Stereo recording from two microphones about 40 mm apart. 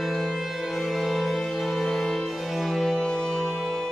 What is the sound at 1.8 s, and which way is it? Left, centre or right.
Music, centre.